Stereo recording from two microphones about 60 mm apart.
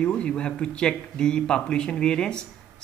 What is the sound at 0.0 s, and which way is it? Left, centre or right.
Speech, centre.